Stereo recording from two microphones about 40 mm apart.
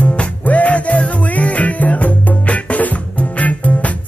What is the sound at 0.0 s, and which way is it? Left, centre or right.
Music, left.